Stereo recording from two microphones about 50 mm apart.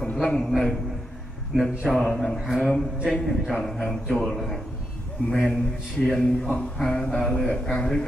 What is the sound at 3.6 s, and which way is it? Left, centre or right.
Speech, centre.